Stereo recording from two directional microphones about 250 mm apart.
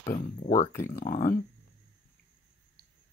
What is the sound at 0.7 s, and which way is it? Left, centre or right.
Speech, centre.